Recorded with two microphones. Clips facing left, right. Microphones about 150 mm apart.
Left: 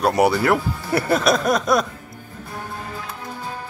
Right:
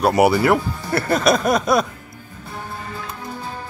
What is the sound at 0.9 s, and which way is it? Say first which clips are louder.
Music: left 1 dB; 15° left (ahead or behind).